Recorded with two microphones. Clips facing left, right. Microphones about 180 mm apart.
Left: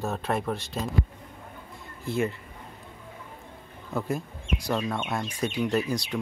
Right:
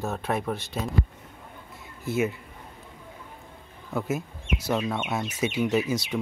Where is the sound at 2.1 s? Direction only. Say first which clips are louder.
Right 1 dB; 5° right (ahead or behind).